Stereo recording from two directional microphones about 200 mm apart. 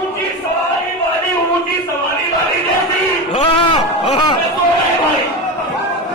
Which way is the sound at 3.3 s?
25° left (ahead or behind).